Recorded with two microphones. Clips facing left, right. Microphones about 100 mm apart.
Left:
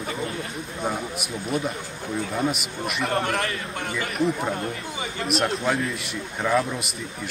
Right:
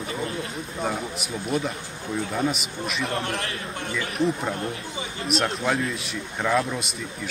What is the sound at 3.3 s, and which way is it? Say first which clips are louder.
Speech: left 4 dB; 80° left.